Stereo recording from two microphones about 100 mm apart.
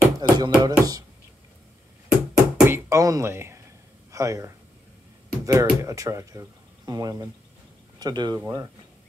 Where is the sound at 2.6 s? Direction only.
25° right (ahead or behind).